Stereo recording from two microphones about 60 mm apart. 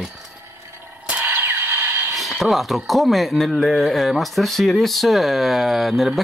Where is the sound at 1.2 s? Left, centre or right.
Right.